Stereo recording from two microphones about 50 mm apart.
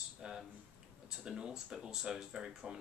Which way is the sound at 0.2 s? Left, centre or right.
Centre.